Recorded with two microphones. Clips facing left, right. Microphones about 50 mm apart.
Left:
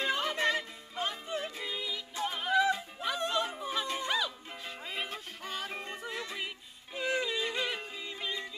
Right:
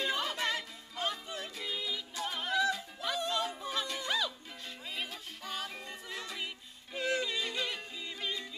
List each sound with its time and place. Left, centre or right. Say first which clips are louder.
0.0 s music: left 3 dB; left
1.7 s music: even; centre
2.6 s music: left 2 dB; left
3.8 s music: left 3 dB; left
4.1 s music: left 2 dB; centre
4.8 s music: left 2 dB; left
6.0 s music: left 1 dB; centre